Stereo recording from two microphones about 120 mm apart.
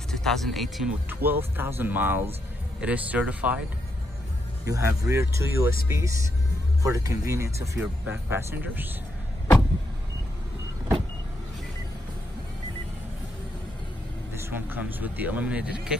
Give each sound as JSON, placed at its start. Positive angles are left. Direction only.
{"t": 0.1, "sound": "speech", "side_deg": 5}
{"t": 1.2, "sound": "speech", "side_deg": -15}
{"t": 4.6, "sound": "speech", "side_deg": -25}
{"t": 14.4, "sound": "speech", "side_deg": -15}